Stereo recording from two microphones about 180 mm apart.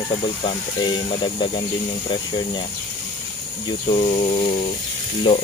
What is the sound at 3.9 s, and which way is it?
Speech, 35° left (ahead or behind).